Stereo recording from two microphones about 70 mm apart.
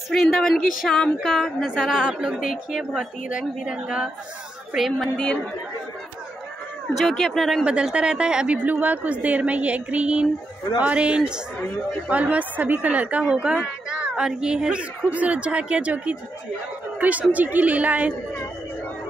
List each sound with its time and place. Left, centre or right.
0.1 s a woman's voice: centre
4.7 s a woman's voice: centre
7.1 s a woman's voice: centre
7.6 s speech: centre
8.6 s a woman's voice: right